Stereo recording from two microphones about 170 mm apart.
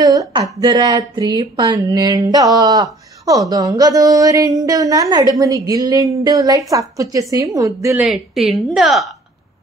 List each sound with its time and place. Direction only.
0.0 s speech: 20° right (ahead or behind)
8.0 s a woman's voice: centre (ahead or behind)